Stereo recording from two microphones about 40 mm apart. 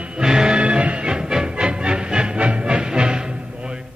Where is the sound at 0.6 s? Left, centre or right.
Right.